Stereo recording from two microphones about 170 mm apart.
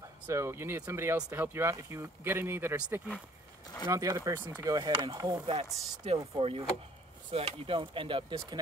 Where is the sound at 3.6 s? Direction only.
25° left (ahead or behind).